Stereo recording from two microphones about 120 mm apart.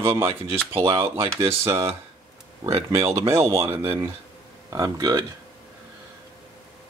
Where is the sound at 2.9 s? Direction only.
25° right (ahead or behind).